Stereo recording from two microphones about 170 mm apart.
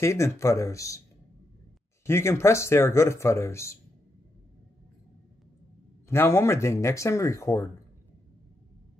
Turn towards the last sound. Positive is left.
turn(degrees=20)  # may be behind; listen again after turning